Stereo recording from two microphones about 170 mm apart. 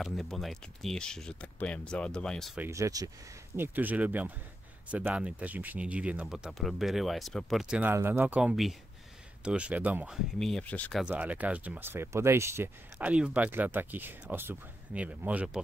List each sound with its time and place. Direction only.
0.0 s speech: centre (ahead or behind)
2.5 s speech: 15° right (ahead or behind); by 11.1 s 5° left (ahead or behind)
11.1 s speech: 10° right (ahead or behind)